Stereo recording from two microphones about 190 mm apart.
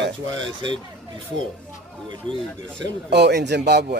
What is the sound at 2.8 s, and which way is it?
Speech, 65° right (ahead or behind).